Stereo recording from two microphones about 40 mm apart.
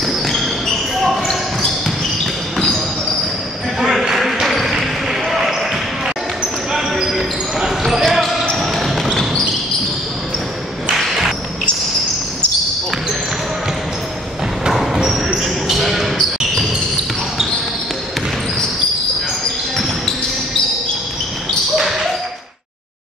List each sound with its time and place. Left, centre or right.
0.9 s a sound: centre
1.2 s a sound: centre
2.5 s basketball bounce: centre
4.0 s basketball bounce: centre
6.7 s basketball bounce: centre
15.0 s basketball bounce: centre